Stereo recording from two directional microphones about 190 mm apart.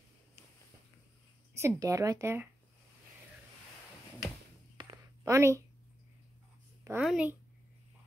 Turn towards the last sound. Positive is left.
turn(degrees=-5)  # may be behind; listen again after turning